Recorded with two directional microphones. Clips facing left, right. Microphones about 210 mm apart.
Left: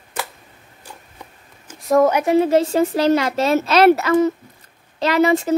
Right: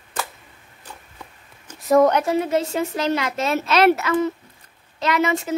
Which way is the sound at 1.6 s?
Centre (ahead or behind).